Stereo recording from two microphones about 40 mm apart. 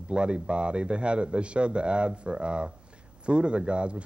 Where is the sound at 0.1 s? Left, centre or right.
Right.